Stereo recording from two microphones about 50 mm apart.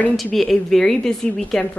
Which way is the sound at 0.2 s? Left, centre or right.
Centre.